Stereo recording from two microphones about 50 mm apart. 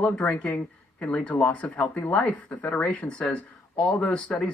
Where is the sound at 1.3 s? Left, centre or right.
Left.